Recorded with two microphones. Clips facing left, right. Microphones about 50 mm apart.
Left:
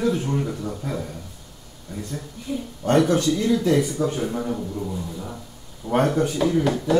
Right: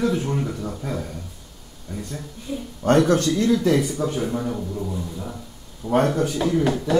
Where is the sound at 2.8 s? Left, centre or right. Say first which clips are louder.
Right 1 dB; right.